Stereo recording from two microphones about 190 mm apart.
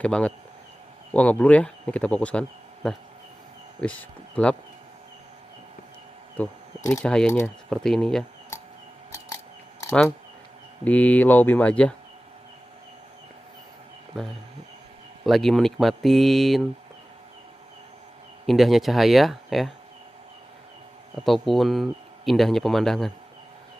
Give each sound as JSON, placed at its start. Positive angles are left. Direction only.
{"t": 0.0, "sound": "speech", "side_deg": 5}
{"t": 6.3, "sound": "speech", "side_deg": 5}
{"t": 9.1, "sound": "scissors", "side_deg": 15}
{"t": 10.8, "sound": "speech", "side_deg": 10}
{"t": 15.2, "sound": "speech", "side_deg": 0}
{"t": 18.4, "sound": "speech", "side_deg": 0}
{"t": 21.2, "sound": "speech", "side_deg": 0}